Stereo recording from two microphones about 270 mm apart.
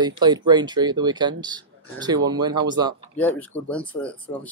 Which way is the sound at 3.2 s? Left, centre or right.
Centre.